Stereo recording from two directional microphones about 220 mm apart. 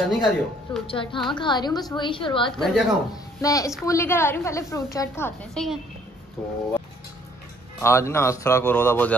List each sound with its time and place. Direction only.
0.1 s speech: centre (ahead or behind)
0.8 s a woman's voice: 25° left (ahead or behind)
2.5 s speech: centre (ahead or behind)
3.1 s speech: 15° left (ahead or behind)
7.8 s speech: 10° left (ahead or behind)